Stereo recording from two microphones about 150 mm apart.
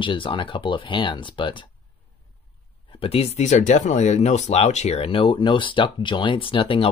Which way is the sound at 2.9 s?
40° left (ahead or behind).